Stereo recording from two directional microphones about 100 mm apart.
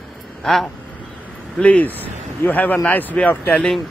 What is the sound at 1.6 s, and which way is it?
Speech, 15° left (ahead or behind).